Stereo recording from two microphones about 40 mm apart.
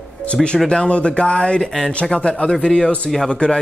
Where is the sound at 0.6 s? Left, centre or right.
Left.